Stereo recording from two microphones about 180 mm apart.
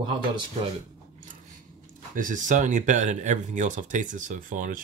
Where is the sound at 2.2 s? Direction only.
45° right (ahead or behind).